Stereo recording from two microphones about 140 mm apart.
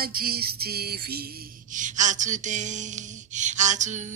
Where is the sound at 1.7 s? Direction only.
60° right (ahead or behind).